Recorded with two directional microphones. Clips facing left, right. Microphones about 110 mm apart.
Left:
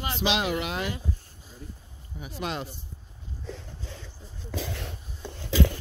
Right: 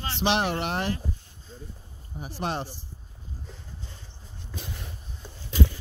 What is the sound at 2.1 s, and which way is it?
Speech, 35° right (ahead or behind).